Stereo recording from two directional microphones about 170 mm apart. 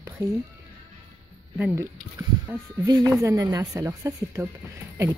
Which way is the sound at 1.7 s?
15° right (ahead or behind).